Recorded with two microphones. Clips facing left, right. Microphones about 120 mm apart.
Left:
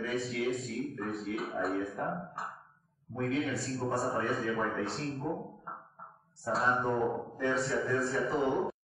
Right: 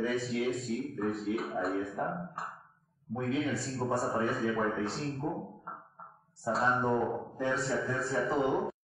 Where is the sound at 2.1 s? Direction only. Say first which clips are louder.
Even; centre (ahead or behind).